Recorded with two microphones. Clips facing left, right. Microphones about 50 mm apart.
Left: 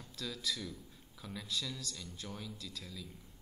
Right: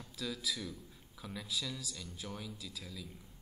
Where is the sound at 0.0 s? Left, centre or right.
Centre.